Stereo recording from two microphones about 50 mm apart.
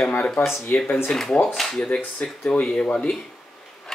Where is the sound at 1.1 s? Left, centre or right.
Centre.